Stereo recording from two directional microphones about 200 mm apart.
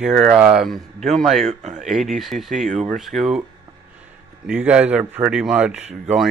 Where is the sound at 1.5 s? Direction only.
35° right (ahead or behind).